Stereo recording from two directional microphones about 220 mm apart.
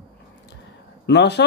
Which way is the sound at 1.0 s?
50° left (ahead or behind).